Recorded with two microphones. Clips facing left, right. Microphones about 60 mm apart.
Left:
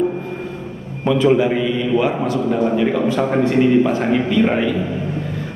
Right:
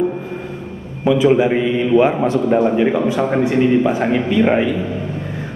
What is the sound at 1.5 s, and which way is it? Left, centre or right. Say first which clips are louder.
A man's voice: right 3 dB; right.